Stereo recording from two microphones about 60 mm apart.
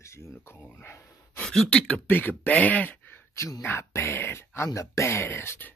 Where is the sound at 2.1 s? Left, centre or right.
Left.